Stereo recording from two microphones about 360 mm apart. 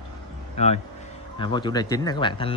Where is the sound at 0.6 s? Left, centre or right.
Centre.